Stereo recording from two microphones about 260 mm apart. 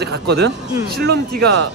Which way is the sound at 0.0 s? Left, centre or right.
Right.